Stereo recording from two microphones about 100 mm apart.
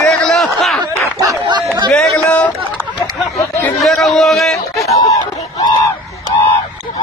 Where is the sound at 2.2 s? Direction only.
15° left (ahead or behind).